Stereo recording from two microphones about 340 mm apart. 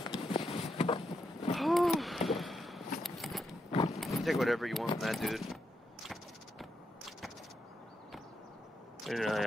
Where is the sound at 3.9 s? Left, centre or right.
Centre.